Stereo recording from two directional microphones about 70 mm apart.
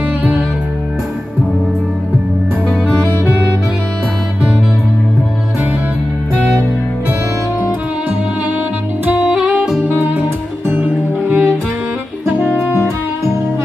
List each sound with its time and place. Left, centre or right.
9.0 s saxophone: centre
9.8 s music: right
11.2 s music: right
12.5 s music: right